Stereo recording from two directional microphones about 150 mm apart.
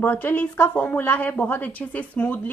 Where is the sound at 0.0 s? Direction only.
15° left (ahead or behind).